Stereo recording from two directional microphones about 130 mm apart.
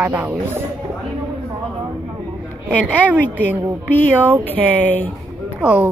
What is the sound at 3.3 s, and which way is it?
Speech, 15° right (ahead or behind).